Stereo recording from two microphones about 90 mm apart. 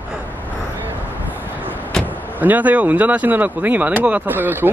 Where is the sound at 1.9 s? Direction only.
5° left (ahead or behind).